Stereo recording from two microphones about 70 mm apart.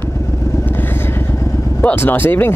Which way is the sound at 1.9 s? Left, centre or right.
Left.